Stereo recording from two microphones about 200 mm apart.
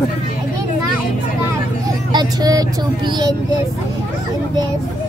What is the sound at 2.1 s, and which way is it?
Speech, 20° right (ahead or behind).